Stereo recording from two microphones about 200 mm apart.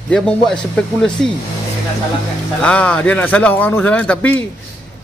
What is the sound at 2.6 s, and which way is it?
Speech, 5° left (ahead or behind).